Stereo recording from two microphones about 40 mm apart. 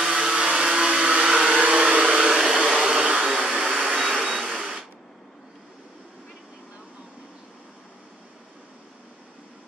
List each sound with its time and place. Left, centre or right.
0.2 s blender: centre
1.5 s hair dryer: right
3.3 s vacuum cleaner: centre
4.0 s vehicle: centre
4.6 s a sound: centre